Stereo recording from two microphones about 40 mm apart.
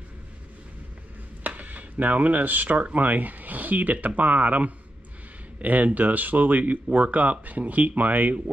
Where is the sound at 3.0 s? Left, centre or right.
Right.